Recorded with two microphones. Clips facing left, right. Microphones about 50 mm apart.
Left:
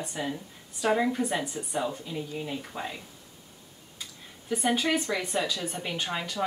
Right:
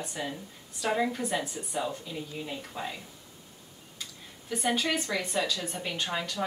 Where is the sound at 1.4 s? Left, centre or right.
Left.